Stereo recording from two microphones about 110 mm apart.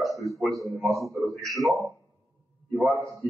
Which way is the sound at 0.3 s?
Centre (ahead or behind).